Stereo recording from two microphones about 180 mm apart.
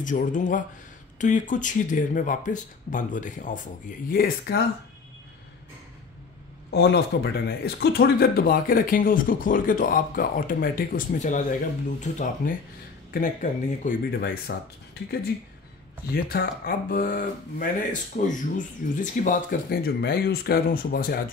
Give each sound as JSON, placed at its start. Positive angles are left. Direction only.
{"t": 0.0, "sound": "speech", "side_deg": 45}
{"t": 4.1, "sound": "speech", "side_deg": 60}
{"t": 6.7, "sound": "speech", "side_deg": 65}
{"t": 16.1, "sound": "speech", "side_deg": 55}